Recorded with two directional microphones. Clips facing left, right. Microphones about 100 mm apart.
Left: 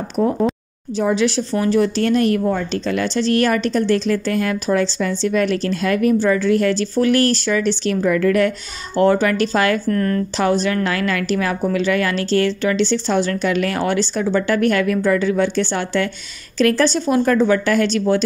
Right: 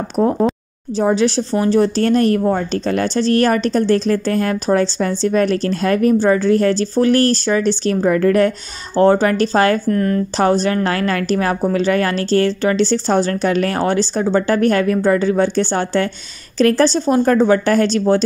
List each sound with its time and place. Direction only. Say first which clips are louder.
0.2 s speech: right 2 dB; 30° right (ahead or behind)
9.8 s a woman's voice: right 2 dB; 20° right (ahead or behind)
10.3 s speech: right 3 dB; 35° right (ahead or behind)